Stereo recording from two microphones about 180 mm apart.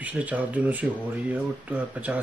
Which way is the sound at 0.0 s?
10° right (ahead or behind).